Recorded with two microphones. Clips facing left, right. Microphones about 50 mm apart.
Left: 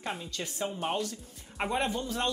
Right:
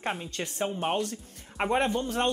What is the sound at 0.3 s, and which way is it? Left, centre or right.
Speech, right.